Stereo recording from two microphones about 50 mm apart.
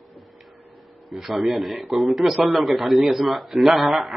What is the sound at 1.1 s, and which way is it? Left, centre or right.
Speech, centre.